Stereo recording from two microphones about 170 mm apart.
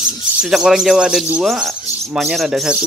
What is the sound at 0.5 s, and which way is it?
Speech, 5° right (ahead or behind).